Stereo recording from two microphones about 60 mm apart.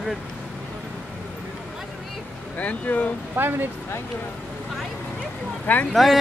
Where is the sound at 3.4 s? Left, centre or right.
Right.